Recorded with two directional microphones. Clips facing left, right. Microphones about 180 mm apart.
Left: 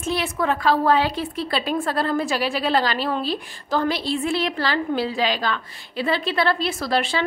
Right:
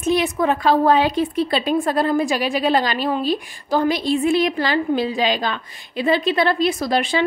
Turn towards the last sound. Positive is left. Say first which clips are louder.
# right 3 dB
turn(degrees=-15)  # may be behind; listen again after turning